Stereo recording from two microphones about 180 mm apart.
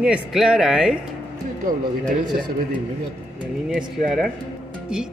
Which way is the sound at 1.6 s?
45° right (ahead or behind).